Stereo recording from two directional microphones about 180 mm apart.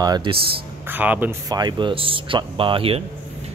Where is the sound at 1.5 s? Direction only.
25° right (ahead or behind).